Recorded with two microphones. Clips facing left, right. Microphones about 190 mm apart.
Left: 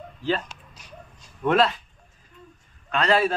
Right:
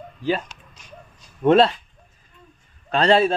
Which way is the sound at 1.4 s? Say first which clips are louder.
Right 5 dB; 30° right (ahead or behind).